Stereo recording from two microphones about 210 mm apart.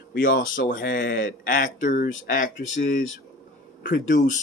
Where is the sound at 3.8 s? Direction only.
40° left (ahead or behind).